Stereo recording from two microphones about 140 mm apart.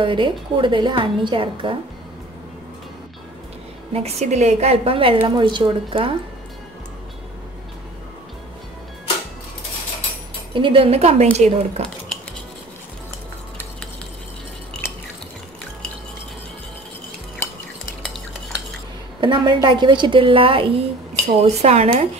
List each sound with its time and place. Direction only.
0.0 s a woman's voice: 35° right (ahead or behind)
3.9 s a woman's voice: 50° right (ahead or behind)
10.5 s speech: 40° right (ahead or behind)
19.2 s a woman's voice: 35° right (ahead or behind)
21.1 s speech: 50° right (ahead or behind)